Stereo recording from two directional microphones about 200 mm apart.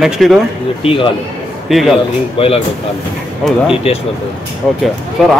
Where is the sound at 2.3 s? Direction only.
30° left (ahead or behind).